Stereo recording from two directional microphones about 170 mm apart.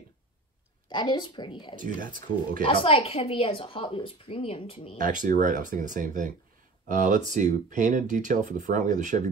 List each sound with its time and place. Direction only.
0.8 s a woman's voice: 25° left (ahead or behind)
4.9 s speech: 50° right (ahead or behind)